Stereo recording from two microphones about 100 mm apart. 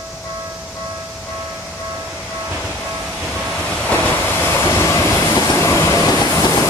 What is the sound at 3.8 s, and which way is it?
Train, 20° left (ahead or behind).